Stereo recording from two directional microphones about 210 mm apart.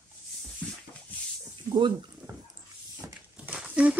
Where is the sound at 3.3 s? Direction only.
5° right (ahead or behind).